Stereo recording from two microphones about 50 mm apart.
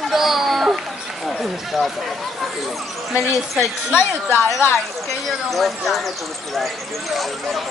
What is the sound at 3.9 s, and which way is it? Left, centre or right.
Speech, left.